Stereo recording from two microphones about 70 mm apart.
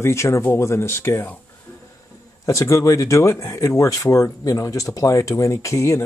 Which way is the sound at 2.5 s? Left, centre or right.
Left.